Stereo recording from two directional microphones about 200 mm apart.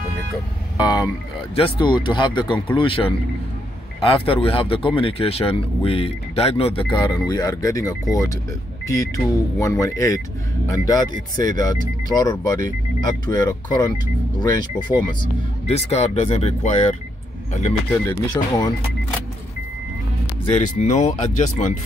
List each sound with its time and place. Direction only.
0.7 s speech: 20° left (ahead or behind); by 17.7 s 35° left (ahead or behind)
20.5 s speech: 35° left (ahead or behind)